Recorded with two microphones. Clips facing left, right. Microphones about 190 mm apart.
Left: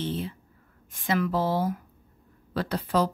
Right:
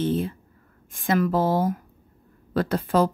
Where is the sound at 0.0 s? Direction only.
50° right (ahead or behind).